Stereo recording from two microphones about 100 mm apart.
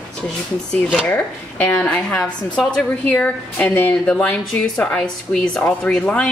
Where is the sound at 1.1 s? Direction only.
15° left (ahead or behind).